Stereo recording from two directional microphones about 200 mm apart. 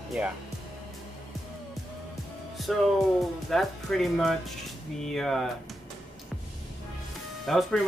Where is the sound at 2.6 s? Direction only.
Centre (ahead or behind).